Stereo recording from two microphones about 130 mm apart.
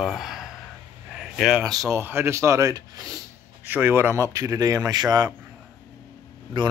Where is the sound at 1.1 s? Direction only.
5° right (ahead or behind).